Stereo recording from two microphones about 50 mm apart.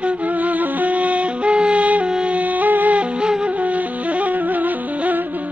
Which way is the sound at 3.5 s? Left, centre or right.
Right.